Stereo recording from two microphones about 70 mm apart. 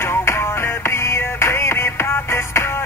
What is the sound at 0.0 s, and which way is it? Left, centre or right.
Music, left.